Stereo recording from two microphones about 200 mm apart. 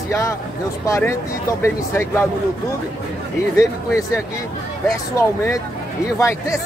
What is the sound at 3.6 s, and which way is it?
Speech, 15° left (ahead or behind).